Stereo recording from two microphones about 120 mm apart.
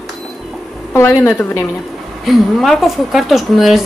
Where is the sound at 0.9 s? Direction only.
20° left (ahead or behind).